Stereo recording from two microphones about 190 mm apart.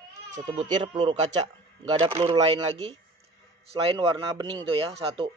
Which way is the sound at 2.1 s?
30° right (ahead or behind).